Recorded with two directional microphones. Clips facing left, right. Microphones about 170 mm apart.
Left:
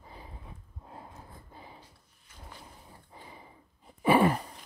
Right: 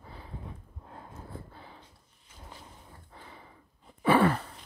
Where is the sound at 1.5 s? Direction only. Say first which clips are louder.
Even; 10° left (ahead or behind).